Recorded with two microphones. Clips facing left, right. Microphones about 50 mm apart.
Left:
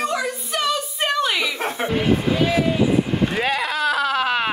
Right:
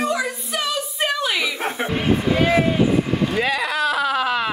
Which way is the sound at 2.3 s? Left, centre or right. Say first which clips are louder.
Right 2 dB; right.